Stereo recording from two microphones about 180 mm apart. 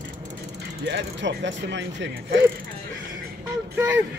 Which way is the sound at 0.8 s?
90° right.